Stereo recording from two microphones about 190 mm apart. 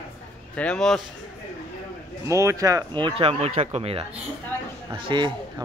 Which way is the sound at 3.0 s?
30° right (ahead or behind).